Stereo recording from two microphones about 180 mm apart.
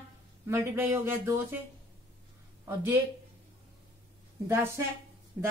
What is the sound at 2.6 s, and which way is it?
Speech, 15° right (ahead or behind).